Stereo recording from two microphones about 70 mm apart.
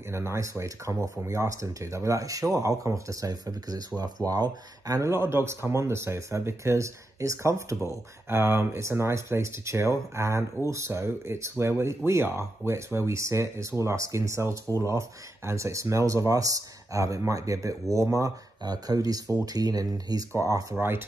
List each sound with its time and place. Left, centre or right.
0.1 s speech: right
5.0 s speech: right
18.6 s speech: right
20.7 s speech: right